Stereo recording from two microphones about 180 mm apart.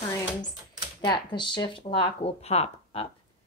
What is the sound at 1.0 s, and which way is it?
Speech, 25° left (ahead or behind).